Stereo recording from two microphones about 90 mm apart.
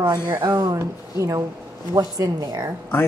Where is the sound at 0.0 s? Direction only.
50° right (ahead or behind).